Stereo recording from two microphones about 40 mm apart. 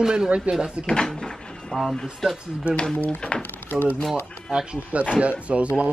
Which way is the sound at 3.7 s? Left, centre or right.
Left.